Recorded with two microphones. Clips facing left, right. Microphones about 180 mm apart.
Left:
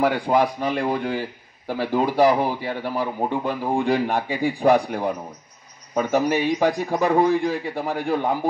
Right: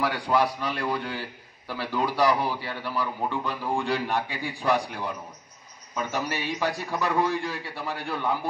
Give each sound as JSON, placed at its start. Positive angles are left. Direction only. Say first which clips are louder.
{"t": 0.0, "sound": "a man's voice", "louder": "left 5 dB", "side_deg": 50}